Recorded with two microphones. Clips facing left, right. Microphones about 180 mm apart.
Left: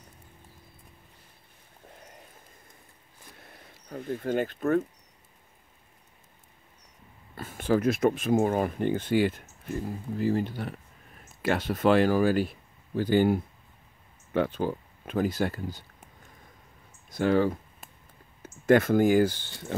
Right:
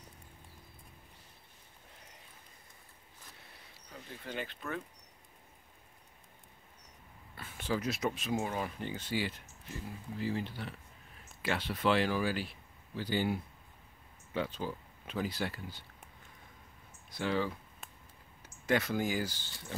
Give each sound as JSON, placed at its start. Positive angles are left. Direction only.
{"t": 3.5, "sound": "speech", "side_deg": 50}
{"t": 7.3, "sound": "speech", "side_deg": 45}
{"t": 17.1, "sound": "speech", "side_deg": 50}